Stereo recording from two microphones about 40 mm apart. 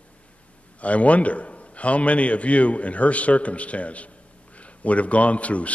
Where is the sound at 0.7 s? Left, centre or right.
Left.